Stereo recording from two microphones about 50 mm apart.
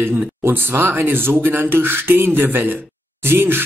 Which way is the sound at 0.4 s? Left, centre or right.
Right.